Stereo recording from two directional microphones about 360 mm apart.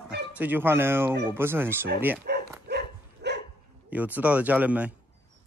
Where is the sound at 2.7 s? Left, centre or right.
Right.